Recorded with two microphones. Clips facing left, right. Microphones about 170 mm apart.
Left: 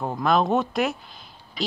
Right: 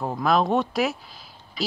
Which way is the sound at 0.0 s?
Centre (ahead or behind).